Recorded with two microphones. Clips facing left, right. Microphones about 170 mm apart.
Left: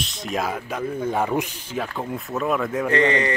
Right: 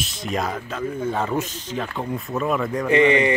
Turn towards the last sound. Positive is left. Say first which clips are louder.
# right 3 dB
turn(degrees=-15)  # may be behind; listen again after turning